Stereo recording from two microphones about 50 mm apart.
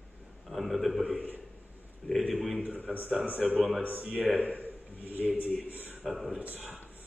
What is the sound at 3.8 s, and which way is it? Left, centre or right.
Speech, right.